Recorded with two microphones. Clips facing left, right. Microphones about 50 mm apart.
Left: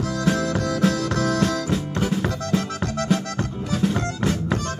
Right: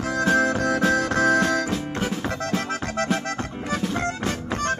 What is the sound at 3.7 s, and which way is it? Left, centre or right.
Music, right.